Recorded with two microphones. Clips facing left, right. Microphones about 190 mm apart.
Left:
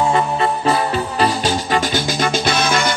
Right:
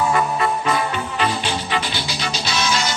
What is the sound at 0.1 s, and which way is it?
Music, 30° left (ahead or behind).